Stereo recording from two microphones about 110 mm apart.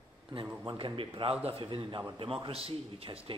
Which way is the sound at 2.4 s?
60° right (ahead or behind).